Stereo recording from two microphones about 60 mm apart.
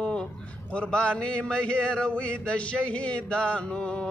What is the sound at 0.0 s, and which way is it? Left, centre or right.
A man's voice, centre.